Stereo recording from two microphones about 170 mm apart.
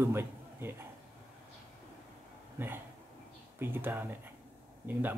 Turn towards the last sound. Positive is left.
turn(degrees=-10)  # may be behind; listen again after turning